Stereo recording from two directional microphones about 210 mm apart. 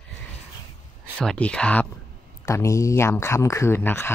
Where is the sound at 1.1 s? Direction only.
5° left (ahead or behind).